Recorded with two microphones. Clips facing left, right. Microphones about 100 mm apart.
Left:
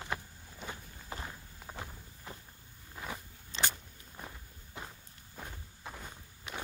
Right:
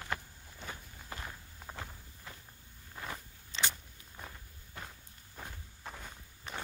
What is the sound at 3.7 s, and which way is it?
Walk, 10° left (ahead or behind).